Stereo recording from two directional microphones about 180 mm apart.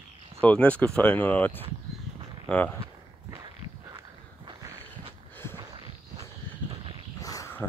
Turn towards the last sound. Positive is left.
turn(degrees=15)  # may be behind; listen again after turning